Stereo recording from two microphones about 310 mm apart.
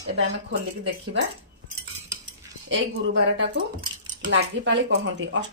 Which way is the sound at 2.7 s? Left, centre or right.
Right.